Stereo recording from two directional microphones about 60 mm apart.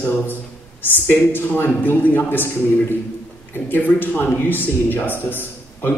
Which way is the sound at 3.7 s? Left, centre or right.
Left.